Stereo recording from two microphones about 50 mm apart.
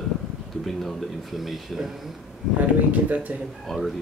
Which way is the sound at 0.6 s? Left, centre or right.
Centre.